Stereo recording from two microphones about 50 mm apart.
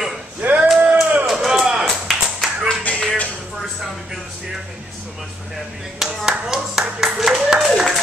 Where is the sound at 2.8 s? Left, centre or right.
Left.